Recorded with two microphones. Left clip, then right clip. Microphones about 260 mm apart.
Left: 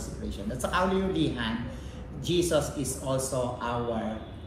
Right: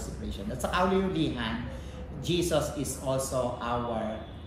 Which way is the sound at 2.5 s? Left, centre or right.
Centre.